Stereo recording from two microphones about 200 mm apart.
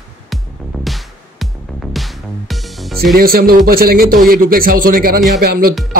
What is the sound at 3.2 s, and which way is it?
A man's voice, 50° right (ahead or behind).